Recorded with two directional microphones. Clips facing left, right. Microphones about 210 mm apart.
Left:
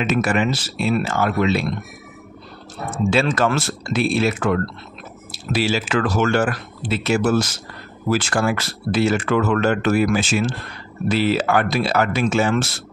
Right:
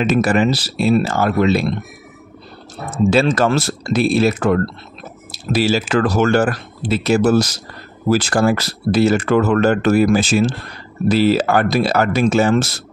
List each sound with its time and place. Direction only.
0.0 s speech: 35° right (ahead or behind)
2.9 s speech: 40° right (ahead or behind)